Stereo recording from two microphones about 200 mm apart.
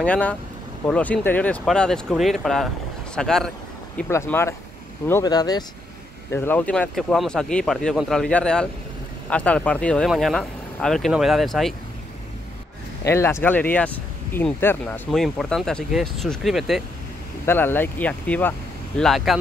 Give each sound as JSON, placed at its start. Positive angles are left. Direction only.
{"t": 0.0, "sound": "speech", "side_deg": 5}
{"t": 4.1, "sound": "speech", "side_deg": 15}
{"t": 6.3, "sound": "speech", "side_deg": 10}
{"t": 13.0, "sound": "speech", "side_deg": 15}
{"t": 17.5, "sound": "speech", "side_deg": 10}